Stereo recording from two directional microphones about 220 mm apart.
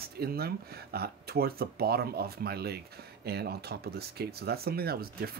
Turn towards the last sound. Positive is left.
turn(degrees=-45)  # may be behind; listen again after turning